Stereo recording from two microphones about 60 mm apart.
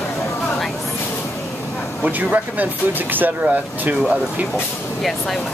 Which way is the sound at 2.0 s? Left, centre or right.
Right.